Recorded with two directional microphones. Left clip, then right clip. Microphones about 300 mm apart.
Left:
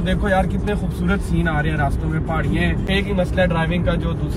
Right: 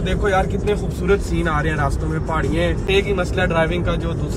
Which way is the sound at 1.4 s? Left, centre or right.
Right.